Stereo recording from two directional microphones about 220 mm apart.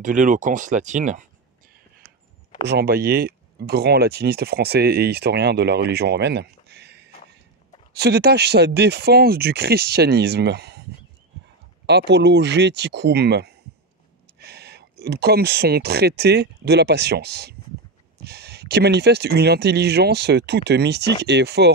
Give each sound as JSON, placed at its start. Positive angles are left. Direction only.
{"t": 0.0, "sound": "speech", "side_deg": -35}
{"t": 2.6, "sound": "speech", "side_deg": -50}
{"t": 11.8, "sound": "speech", "side_deg": -50}